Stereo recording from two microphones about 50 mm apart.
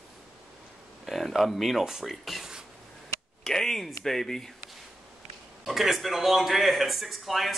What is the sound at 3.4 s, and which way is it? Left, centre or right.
Speech, centre.